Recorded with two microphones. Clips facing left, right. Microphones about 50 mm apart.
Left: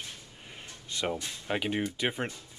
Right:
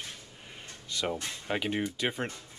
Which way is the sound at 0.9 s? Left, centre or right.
Left.